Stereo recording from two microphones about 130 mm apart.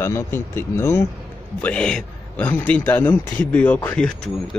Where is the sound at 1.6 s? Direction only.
10° left (ahead or behind).